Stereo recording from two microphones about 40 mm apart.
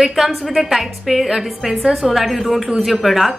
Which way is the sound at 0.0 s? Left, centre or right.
Centre.